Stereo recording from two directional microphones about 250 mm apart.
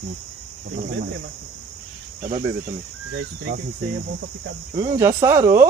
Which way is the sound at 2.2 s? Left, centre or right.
Right.